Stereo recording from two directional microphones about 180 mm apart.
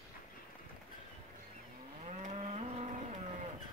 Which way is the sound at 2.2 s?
35° right (ahead or behind).